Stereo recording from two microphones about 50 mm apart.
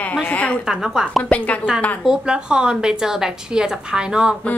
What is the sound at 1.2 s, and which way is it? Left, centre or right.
Speech, left.